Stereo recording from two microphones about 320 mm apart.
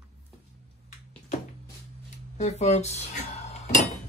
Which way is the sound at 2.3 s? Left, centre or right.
Left.